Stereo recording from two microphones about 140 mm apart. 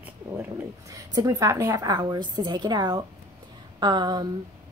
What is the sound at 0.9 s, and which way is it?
A woman's voice, 25° right (ahead or behind).